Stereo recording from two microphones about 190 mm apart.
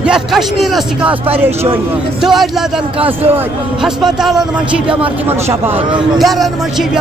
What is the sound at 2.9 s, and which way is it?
Speech, 30° right (ahead or behind).